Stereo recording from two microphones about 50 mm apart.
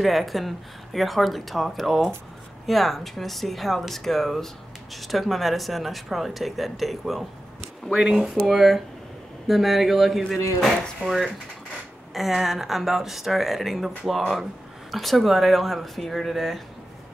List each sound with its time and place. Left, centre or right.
0.0 s speech: centre
8.0 s speech: centre
8.4 s speech: centre